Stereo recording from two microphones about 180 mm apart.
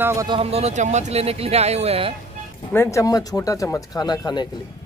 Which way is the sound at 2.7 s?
15° left (ahead or behind).